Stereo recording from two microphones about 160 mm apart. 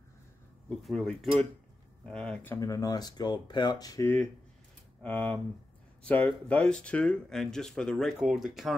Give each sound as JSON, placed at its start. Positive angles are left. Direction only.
{"t": 0.7, "sound": "speech", "side_deg": 5}
{"t": 5.0, "sound": "speech", "side_deg": 10}